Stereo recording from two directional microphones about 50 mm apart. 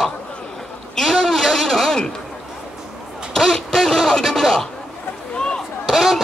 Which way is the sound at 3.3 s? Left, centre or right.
Centre.